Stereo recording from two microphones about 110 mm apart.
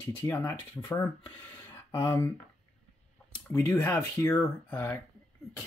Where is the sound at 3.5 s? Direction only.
20° left (ahead or behind).